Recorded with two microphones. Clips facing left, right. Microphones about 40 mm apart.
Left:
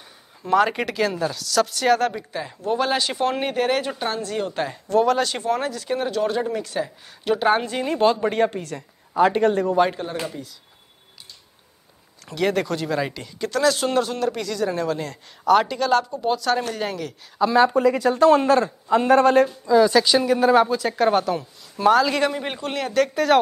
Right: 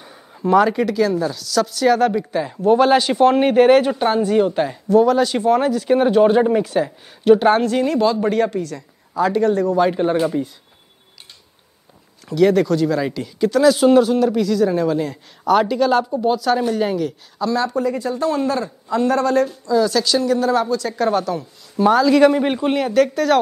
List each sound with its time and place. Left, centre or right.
0.4 s speech: right
0.8 s speech: centre
2.3 s speech: centre
6.0 s speech: right
6.6 s speech: centre
8.2 s a woman's voice: left
8.5 s a woman's voice: left
10.2 s speech: right
12.3 s speech: centre
17.4 s a woman's voice: left
18.1 s a man's voice: left
18.9 s a woman's voice: left
21.4 s speech: centre
23.1 s speech: centre